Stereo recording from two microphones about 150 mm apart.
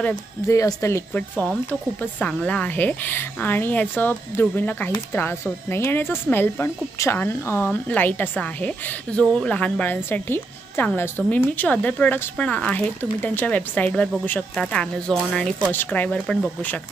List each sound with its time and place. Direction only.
0.5 s speech: 20° left (ahead or behind)
2.0 s speech: 10° left (ahead or behind)